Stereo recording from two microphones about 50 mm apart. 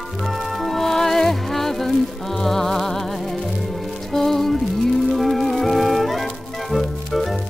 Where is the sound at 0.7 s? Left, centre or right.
Centre.